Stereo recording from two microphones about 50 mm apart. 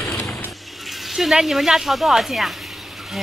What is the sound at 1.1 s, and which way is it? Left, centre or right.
Speech, centre.